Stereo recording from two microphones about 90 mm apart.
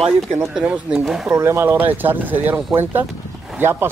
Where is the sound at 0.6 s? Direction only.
10° right (ahead or behind).